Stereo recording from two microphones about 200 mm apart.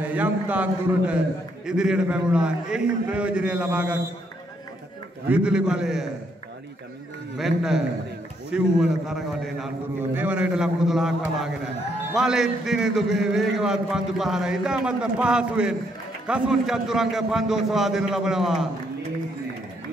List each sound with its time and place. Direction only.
0.0 s a man's voice: 10° right (ahead or behind)
5.3 s a man's voice: 5° right (ahead or behind)
7.3 s a man's voice: centre (ahead or behind)